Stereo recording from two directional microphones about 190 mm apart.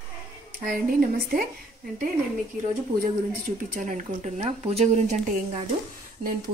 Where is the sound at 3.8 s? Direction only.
40° right (ahead or behind).